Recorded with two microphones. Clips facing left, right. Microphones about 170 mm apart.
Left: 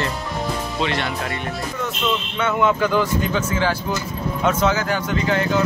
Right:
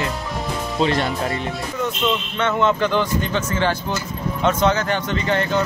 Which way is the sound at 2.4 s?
10° left (ahead or behind).